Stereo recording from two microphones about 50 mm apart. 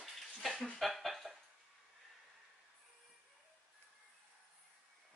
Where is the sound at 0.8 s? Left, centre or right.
Centre.